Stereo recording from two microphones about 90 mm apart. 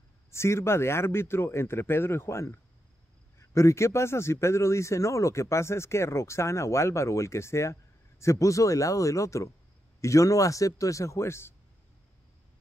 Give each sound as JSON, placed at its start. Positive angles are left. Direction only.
{"t": 0.3, "sound": "a man's voice", "side_deg": 30}